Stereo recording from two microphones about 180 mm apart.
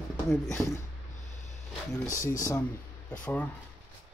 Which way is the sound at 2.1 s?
20° left (ahead or behind).